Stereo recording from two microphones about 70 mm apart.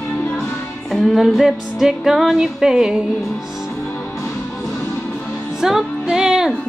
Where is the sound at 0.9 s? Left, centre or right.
Centre.